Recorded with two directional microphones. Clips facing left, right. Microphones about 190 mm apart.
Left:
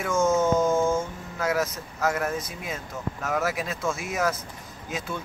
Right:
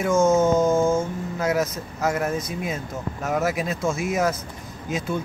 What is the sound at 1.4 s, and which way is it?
Speech, 20° right (ahead or behind).